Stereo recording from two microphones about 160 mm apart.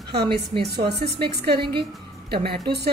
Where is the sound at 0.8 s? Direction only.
90° right.